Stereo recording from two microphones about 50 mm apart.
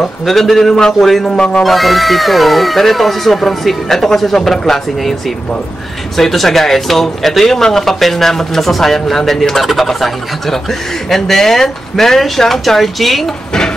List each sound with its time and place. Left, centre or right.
0.3 s speech: centre
1.2 s speech: centre
1.6 s speech: centre
6.1 s speech: centre